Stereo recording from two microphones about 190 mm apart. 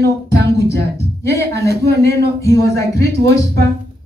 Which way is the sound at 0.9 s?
15° left (ahead or behind).